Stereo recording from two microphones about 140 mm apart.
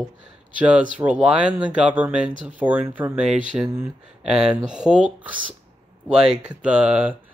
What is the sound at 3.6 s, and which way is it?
Speech, 20° right (ahead or behind).